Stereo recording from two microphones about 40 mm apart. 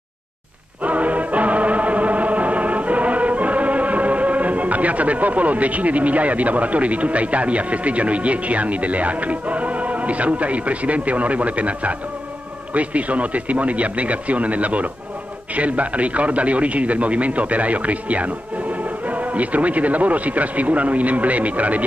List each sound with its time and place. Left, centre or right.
0.8 s music: right
12.7 s a man's voice: right